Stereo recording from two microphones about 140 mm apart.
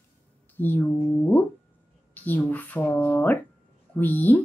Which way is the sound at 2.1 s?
10° left (ahead or behind).